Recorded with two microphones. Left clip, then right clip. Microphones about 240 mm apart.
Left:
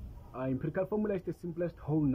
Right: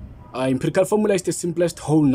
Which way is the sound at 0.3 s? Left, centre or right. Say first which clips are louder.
Right 14 dB; centre.